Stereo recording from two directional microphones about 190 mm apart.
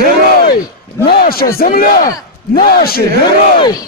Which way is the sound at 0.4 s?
55° left (ahead or behind).